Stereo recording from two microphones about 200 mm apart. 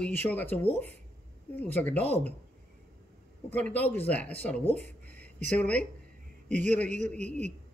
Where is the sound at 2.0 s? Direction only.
35° right (ahead or behind).